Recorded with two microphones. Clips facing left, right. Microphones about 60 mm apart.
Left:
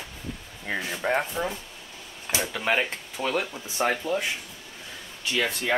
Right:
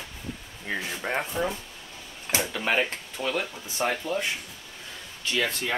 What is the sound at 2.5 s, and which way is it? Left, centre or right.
Speech, centre.